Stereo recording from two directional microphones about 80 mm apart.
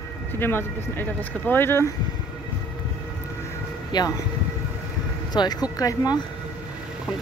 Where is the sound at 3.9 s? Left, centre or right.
Left.